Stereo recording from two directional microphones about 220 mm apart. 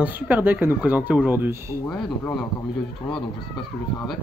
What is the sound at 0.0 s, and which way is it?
Speech, 10° right (ahead or behind).